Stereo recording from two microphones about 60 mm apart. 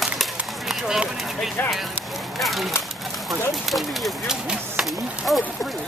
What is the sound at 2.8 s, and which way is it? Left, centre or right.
Bird, centre.